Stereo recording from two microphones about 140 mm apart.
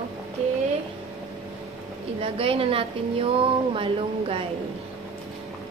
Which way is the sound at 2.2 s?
40° right (ahead or behind).